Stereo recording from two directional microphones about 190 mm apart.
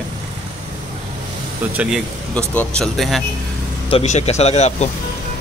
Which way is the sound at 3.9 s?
35° left (ahead or behind).